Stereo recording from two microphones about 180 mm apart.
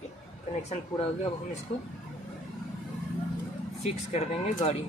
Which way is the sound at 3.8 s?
35° left (ahead or behind).